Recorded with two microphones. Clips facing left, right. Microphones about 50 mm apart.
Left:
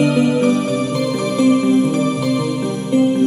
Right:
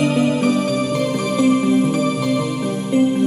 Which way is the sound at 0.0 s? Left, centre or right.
Left.